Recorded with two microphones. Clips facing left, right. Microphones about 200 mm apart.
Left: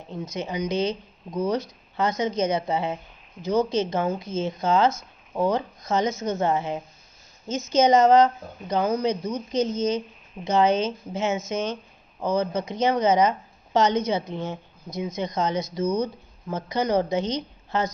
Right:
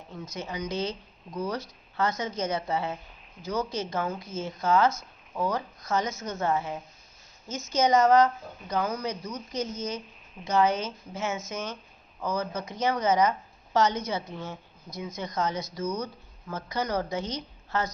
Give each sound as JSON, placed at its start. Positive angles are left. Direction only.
{"t": 0.1, "sound": "speech", "side_deg": 20}